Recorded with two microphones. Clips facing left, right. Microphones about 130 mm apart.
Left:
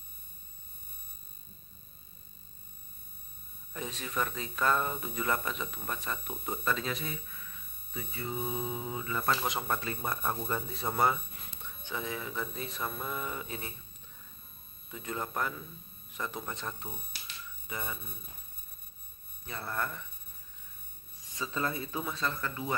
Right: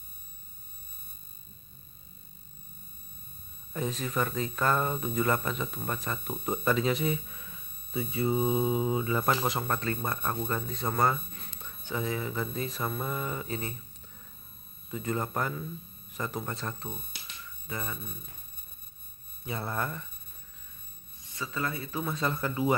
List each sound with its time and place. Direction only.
3.7 s speech: centre (ahead or behind)
7.1 s a sound: 25° right (ahead or behind)
8.2 s mantra: 30° right (ahead or behind)
9.4 s speech: centre (ahead or behind)
14.9 s speech: centre (ahead or behind)
19.4 s speech: 15° right (ahead or behind)
21.4 s speech: 25° left (ahead or behind)
22.2 s speech: 20° right (ahead or behind)